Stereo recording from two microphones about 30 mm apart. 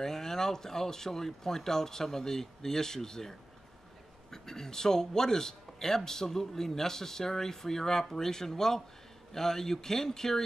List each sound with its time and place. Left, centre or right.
0.0 s speech: centre